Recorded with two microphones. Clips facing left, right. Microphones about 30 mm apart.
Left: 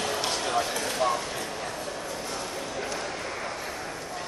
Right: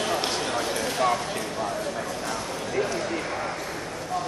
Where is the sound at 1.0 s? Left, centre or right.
Right.